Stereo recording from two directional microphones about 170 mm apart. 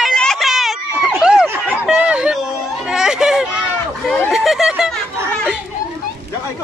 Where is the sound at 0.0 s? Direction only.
5° left (ahead or behind).